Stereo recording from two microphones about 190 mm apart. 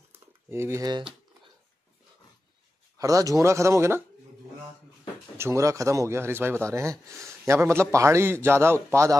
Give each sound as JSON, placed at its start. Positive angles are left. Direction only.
{"t": 0.1, "sound": "a sound", "side_deg": -15}
{"t": 3.0, "sound": "speech", "side_deg": -20}
{"t": 5.4, "sound": "speech", "side_deg": -15}